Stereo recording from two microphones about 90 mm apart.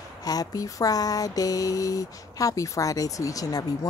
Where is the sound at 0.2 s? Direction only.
45° left (ahead or behind).